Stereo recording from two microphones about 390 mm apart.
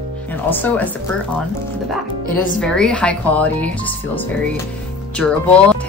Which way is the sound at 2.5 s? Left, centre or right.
Centre.